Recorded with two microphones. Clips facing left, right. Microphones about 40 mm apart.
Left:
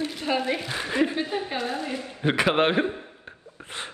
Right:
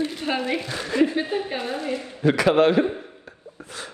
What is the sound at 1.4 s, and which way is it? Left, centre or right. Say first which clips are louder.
Speech: right 1 dB; centre.